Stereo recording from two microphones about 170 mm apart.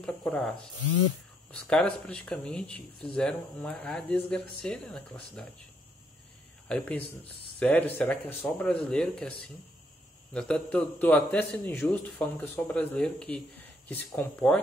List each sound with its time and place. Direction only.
0.0 s speech: 5° left (ahead or behind)
6.7 s a man's voice: 10° left (ahead or behind)
10.3 s a man's voice: 5° left (ahead or behind)